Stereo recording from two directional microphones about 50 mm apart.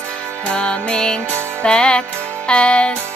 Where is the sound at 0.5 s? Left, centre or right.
Centre.